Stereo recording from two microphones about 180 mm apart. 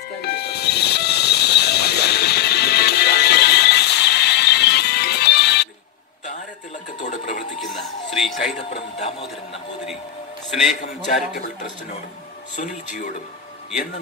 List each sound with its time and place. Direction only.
0.2 s train: 65° left (ahead or behind)
7.0 s a sound: 40° left (ahead or behind)
8.2 s music: centre (ahead or behind)
8.9 s speech: 35° left (ahead or behind)
11.3 s a man's voice: 50° left (ahead or behind)